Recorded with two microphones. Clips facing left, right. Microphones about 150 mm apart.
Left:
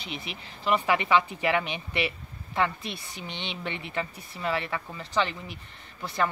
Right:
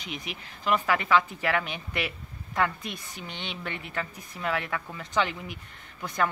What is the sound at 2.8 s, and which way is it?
Speech, 45° right (ahead or behind).